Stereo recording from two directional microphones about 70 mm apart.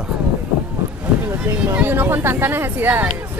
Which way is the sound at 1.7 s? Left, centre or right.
Right.